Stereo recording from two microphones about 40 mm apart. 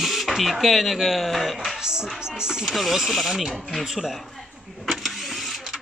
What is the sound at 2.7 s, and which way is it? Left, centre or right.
Speech, centre.